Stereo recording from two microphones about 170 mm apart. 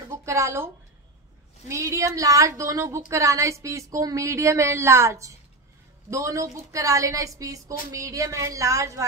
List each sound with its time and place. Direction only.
0.2 s speech: 15° right (ahead or behind)
1.7 s a woman's voice: 15° right (ahead or behind)